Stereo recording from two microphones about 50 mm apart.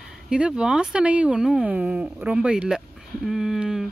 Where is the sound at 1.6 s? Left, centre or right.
Right.